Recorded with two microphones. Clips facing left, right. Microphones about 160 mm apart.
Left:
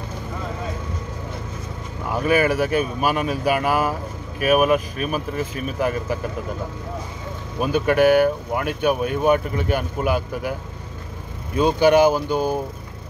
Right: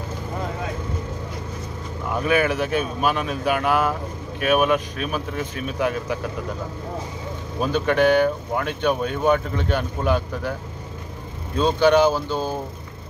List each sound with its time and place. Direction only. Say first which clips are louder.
2.0 s speech: left 2 dB; 5° left (ahead or behind)
7.6 s speech: left 2 dB; 10° left (ahead or behind)
11.5 s speech: left 1 dB; 10° left (ahead or behind)